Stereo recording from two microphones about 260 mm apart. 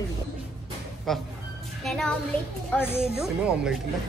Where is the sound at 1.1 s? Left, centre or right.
Centre.